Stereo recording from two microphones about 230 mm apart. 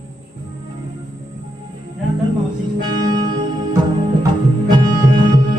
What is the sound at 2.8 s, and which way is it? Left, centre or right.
Music, centre.